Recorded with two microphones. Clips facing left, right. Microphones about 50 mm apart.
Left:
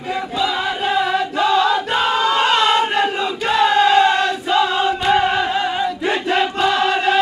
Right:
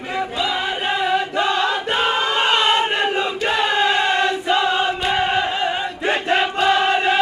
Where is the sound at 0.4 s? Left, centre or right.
Right.